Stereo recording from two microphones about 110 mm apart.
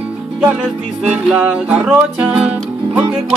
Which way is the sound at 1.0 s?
10° right (ahead or behind).